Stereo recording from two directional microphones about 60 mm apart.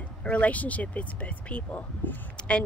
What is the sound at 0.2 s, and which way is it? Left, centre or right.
Speech, left.